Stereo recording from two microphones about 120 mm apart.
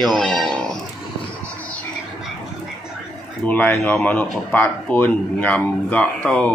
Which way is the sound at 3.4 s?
15° left (ahead or behind).